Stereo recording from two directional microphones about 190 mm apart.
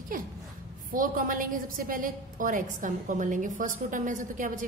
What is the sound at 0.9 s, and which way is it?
A woman's voice, 45° right (ahead or behind).